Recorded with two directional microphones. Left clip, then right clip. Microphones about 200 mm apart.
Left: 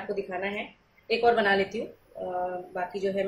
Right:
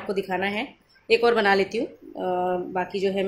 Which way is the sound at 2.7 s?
45° right (ahead or behind).